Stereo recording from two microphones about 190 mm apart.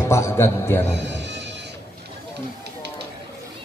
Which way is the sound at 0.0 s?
15° left (ahead or behind).